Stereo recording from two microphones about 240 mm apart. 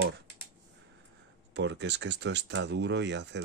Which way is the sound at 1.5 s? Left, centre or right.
Right.